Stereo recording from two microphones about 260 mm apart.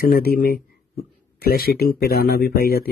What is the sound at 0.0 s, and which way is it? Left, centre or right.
Speech, left.